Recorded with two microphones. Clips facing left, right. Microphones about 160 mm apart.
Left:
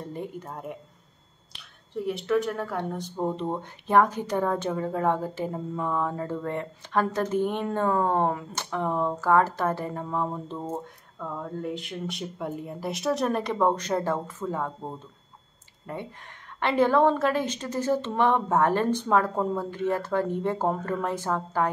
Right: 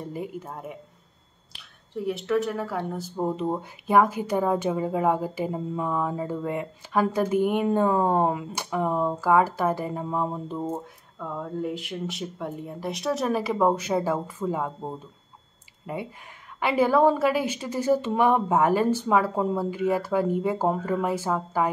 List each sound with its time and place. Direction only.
0.0 s speech: 5° right (ahead or behind)